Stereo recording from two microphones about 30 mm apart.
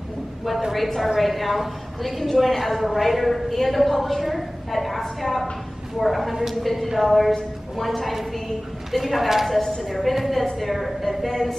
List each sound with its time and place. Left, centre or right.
0.7 s a woman's voice: centre
6.6 s a woman's voice: centre
11.1 s speech: centre